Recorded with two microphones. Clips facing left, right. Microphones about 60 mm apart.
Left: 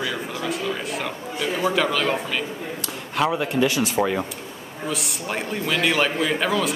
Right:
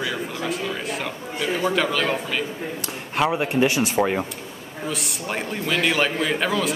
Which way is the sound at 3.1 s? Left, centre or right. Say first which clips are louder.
Right 1 dB; right.